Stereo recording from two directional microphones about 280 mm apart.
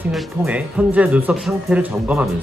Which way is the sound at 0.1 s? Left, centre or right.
Centre.